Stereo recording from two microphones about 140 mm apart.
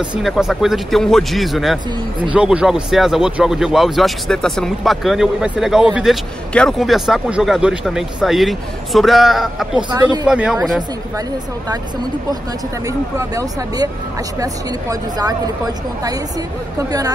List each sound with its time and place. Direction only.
0.0 s speech: 5° right (ahead or behind)
9.8 s a woman's voice: 30° right (ahead or behind)
10.2 s speech: 5° right (ahead or behind)
12.8 s a woman's voice: 25° right (ahead or behind)